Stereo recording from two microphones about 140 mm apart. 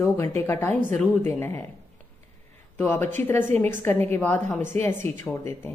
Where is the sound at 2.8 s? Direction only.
15° left (ahead or behind).